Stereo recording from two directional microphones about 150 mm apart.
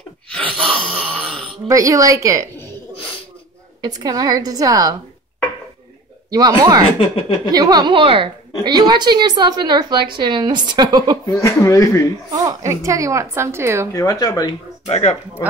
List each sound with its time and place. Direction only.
0.6 s a sound: 5° left (ahead or behind)
1.7 s a woman's voice: 20° right (ahead or behind)
3.8 s a woman's voice: 25° right (ahead or behind)
6.3 s a woman's voice: 25° right (ahead or behind)
7.0 s speech: 35° left (ahead or behind)
7.5 s a woman's voice: 25° right (ahead or behind)
11.2 s speech: 20° left (ahead or behind)
12.3 s a woman's voice: 20° right (ahead or behind)
13.9 s speech: 25° left (ahead or behind)
14.9 s speech: 50° left (ahead or behind)